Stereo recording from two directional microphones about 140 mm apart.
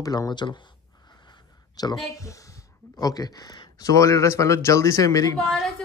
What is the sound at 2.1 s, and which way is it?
Speech, 25° left (ahead or behind).